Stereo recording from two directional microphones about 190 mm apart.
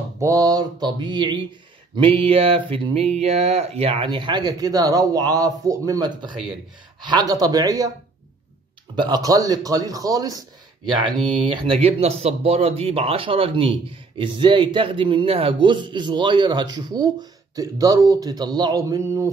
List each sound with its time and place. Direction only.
0.2 s speech: 20° right (ahead or behind)
8.9 s speech: 20° right (ahead or behind)
11.4 s speech: 25° right (ahead or behind)